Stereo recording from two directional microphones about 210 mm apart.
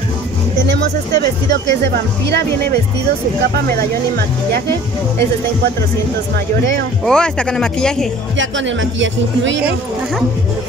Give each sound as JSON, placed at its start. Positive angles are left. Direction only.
{"t": 0.7, "sound": "speech", "side_deg": -55}
{"t": 7.1, "sound": "speech", "side_deg": 5}
{"t": 8.4, "sound": "a man's voice", "side_deg": -60}